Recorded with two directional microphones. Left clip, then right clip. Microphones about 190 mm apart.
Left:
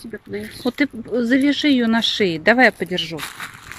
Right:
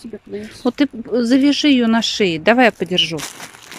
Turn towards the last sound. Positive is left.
turn(degrees=-35)  # may be behind; listen again after turning